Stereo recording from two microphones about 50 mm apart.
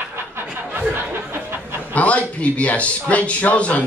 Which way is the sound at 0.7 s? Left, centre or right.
Right.